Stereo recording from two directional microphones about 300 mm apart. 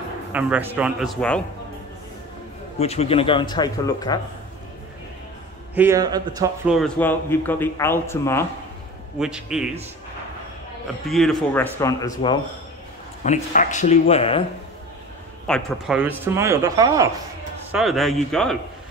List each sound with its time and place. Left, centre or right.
0.3 s a man's voice: centre
2.8 s speech: left
5.8 s speech: centre
6.7 s speech: centre
9.2 s a man's voice: centre
11.1 s a man's voice: centre
13.2 s speech: left
15.4 s speech: centre
17.6 s a man's voice: centre